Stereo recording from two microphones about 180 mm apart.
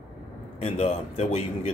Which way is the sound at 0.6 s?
35° left (ahead or behind).